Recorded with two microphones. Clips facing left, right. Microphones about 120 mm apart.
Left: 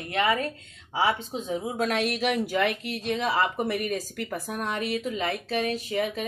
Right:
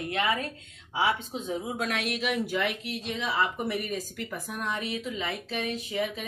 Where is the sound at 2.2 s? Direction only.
50° left (ahead or behind).